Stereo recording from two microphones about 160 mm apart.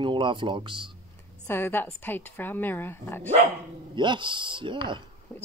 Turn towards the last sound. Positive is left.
turn(degrees=-30)  # may be behind; listen again after turning